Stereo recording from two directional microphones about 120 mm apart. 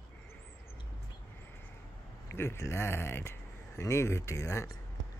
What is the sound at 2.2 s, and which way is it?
Speech, 20° left (ahead or behind).